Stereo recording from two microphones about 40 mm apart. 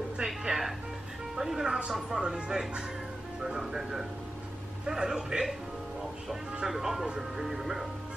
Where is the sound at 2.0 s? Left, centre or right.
Centre.